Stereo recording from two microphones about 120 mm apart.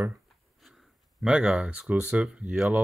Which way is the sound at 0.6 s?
Centre (ahead or behind).